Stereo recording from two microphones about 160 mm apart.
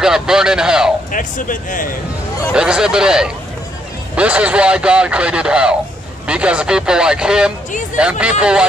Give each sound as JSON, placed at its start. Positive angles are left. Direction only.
{"t": 0.0, "sound": "speech", "side_deg": -5}
{"t": 1.1, "sound": "speech", "side_deg": 55}
{"t": 2.5, "sound": "speech", "side_deg": -5}